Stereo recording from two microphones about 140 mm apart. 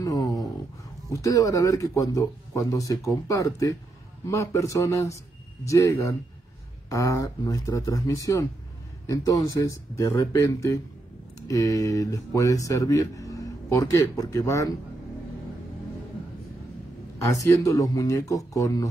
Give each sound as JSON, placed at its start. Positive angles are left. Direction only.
{"t": 0.0, "sound": "a sound", "side_deg": 25}
{"t": 1.1, "sound": "speech", "side_deg": 25}
{"t": 17.3, "sound": "speech", "side_deg": 25}